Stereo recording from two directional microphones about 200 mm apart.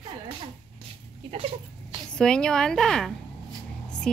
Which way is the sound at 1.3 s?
30° right (ahead or behind).